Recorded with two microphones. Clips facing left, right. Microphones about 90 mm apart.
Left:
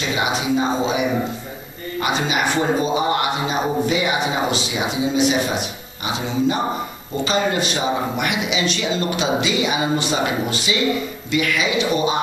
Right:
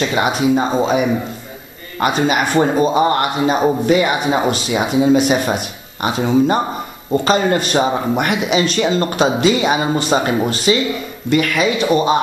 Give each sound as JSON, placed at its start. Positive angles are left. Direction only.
{"t": 0.1, "sound": "a man's voice", "side_deg": -50}